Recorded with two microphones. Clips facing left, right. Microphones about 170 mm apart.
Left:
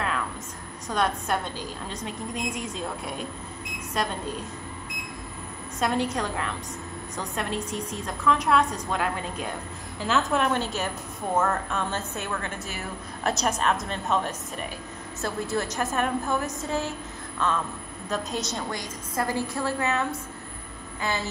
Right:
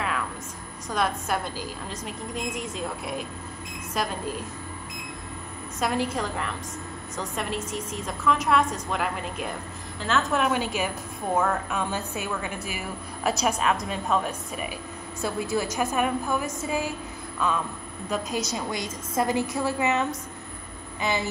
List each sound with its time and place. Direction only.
0.8 s a woman's voice: centre (ahead or behind)
5.8 s a woman's voice: 5° right (ahead or behind)
11.3 s a woman's voice: centre (ahead or behind)
11.7 s a woman's voice: 10° right (ahead or behind)
18.1 s a woman's voice: centre (ahead or behind)
18.7 s a woman's voice: 20° right (ahead or behind)